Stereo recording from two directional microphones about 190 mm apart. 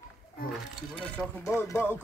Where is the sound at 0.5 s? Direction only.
5° left (ahead or behind).